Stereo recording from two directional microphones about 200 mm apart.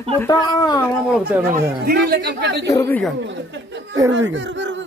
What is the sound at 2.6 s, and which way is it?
Speech, 10° left (ahead or behind).